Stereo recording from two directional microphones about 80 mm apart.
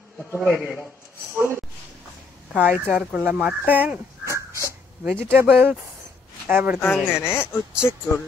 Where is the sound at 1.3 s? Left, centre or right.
Right.